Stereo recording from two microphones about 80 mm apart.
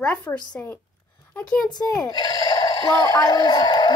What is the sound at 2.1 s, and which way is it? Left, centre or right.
Speech, left.